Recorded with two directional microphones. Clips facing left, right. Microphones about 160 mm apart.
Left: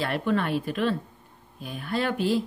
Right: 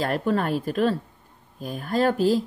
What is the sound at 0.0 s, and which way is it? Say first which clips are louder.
Speech: right 2 dB; 40° right (ahead or behind).